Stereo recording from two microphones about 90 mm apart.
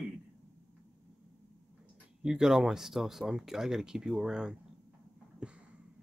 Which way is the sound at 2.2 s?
10° right (ahead or behind).